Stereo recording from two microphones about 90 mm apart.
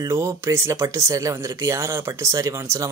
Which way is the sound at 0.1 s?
35° right (ahead or behind).